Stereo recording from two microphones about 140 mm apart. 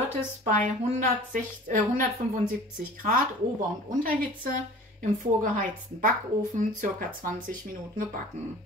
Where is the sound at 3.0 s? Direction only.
90° right.